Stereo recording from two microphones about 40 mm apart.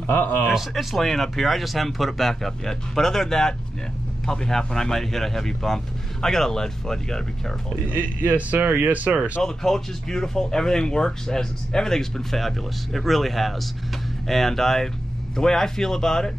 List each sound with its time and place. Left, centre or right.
0.0 s speech: left
0.5 s speech: centre
7.9 s speech: right
9.1 s speech: right
9.4 s speech: centre